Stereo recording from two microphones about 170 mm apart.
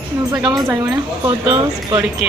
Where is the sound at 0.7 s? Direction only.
15° right (ahead or behind).